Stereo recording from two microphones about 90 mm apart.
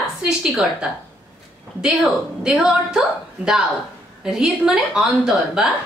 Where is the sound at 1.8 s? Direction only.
5° right (ahead or behind).